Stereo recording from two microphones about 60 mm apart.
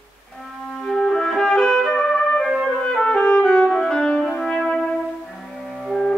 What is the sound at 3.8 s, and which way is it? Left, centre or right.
Brass instrument, centre.